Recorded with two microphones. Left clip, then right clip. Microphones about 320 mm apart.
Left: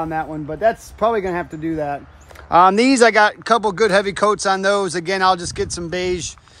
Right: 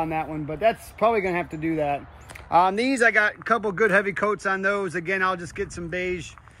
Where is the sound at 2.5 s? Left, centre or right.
Left.